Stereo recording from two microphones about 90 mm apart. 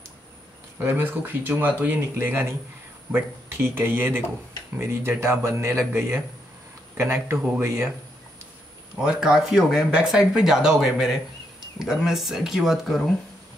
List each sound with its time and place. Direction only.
0.7 s speech: 20° right (ahead or behind)
9.0 s speech: 10° right (ahead or behind)